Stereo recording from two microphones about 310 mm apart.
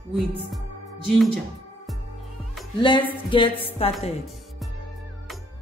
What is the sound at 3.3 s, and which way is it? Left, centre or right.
Music, centre.